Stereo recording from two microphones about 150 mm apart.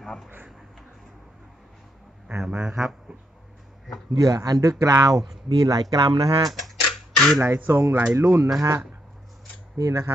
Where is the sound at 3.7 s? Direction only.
Centre (ahead or behind).